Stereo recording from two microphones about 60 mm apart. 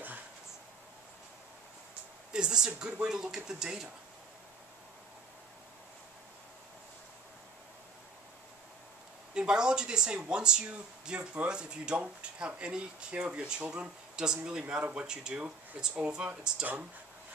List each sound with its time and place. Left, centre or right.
2.3 s a woman's voice: centre
9.3 s speech: centre